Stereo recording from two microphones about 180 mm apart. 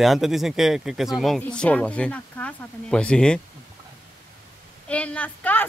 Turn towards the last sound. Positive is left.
turn(degrees=10)  # may be behind; listen again after turning